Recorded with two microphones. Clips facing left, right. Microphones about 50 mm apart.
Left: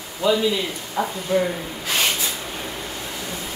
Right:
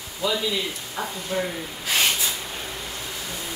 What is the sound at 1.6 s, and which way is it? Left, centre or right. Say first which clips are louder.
Snort: left 1 dB; centre.